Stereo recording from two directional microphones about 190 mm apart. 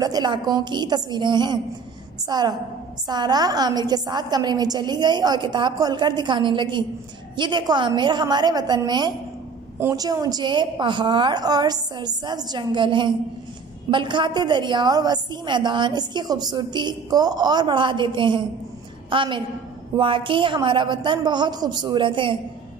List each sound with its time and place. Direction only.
0.0 s a woman's voice: 20° right (ahead or behind)